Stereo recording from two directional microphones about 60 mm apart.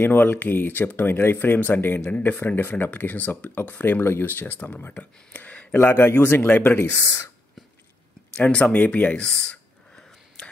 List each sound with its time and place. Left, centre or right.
0.0 s speech: left
5.8 s speech: left
8.4 s a sound: centre